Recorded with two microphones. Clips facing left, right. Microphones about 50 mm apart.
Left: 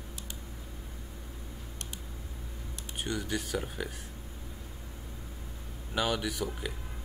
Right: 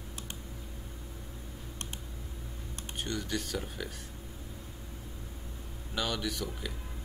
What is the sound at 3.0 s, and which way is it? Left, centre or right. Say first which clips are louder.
Speech: left 1 dB; centre.